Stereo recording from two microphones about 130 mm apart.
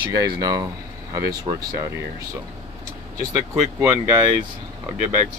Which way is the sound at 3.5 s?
20° right (ahead or behind).